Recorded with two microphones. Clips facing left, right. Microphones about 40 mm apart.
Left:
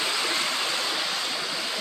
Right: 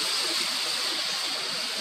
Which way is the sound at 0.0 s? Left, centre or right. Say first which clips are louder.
Left 4 dB; left.